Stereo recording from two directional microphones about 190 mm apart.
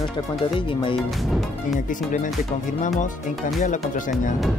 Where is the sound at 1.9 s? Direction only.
45° left (ahead or behind).